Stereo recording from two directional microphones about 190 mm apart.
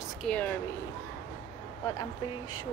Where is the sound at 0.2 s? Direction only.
10° left (ahead or behind).